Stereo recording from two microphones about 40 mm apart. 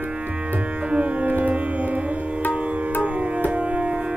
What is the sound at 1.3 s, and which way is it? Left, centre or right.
Music, right.